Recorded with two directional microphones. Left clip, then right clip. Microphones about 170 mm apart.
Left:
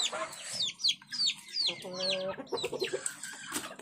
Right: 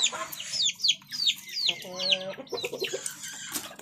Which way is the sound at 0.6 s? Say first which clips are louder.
Right 5 dB; 40° left (ahead or behind).